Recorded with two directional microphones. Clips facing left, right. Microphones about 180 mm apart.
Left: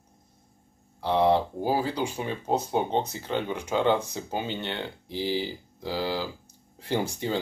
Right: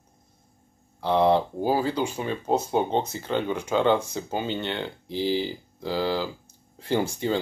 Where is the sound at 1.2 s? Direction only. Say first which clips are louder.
Right 1 dB; 15° left (ahead or behind).